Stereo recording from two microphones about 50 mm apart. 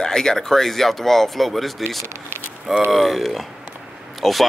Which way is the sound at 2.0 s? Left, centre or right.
Right.